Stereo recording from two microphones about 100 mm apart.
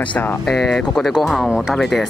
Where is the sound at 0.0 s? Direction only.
15° left (ahead or behind).